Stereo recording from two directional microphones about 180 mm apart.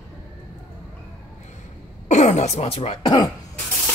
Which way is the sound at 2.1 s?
40° left (ahead or behind).